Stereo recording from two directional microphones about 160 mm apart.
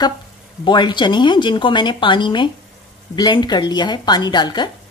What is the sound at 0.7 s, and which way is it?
Speech, 30° left (ahead or behind).